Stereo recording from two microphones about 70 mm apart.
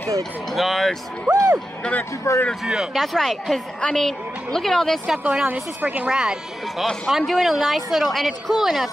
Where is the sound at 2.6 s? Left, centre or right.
Centre.